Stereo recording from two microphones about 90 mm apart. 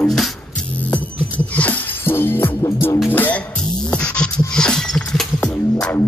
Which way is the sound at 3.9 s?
10° left (ahead or behind).